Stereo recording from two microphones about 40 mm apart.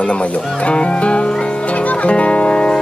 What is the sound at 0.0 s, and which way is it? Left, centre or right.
Speech, left.